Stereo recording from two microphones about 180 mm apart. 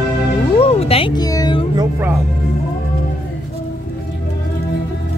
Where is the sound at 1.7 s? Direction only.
15° right (ahead or behind).